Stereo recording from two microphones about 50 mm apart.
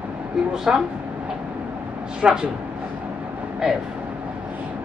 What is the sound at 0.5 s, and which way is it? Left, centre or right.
Speech, centre.